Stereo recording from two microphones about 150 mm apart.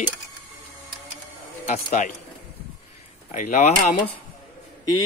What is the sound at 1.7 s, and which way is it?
Speech, 50° left (ahead or behind).